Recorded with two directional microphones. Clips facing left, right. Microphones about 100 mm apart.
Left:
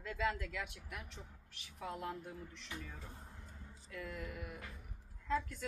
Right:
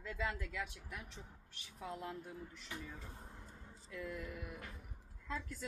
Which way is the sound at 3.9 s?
Centre (ahead or behind).